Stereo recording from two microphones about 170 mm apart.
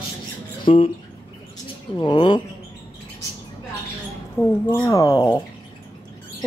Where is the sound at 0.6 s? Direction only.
35° left (ahead or behind).